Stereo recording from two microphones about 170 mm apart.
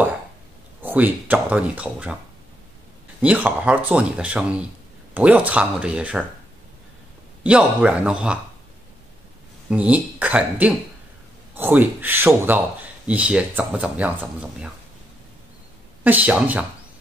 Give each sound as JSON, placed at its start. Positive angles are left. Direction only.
{"t": 0.8, "sound": "a man's voice", "side_deg": -10}
{"t": 3.2, "sound": "a man's voice", "side_deg": -10}
{"t": 7.4, "sound": "a man's voice", "side_deg": -5}
{"t": 9.7, "sound": "a man's voice", "side_deg": -10}
{"t": 16.0, "sound": "a man's voice", "side_deg": -10}